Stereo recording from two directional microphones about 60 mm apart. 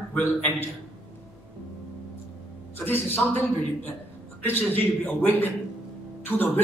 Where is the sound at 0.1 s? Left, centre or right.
Left.